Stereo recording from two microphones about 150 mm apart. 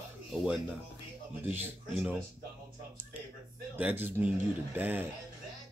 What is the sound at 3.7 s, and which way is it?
Speech, 15° right (ahead or behind).